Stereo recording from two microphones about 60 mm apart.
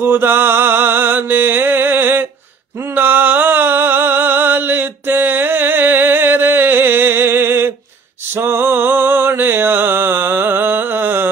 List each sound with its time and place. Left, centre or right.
0.0 s music: right
2.9 s a sound: right
8.4 s music: right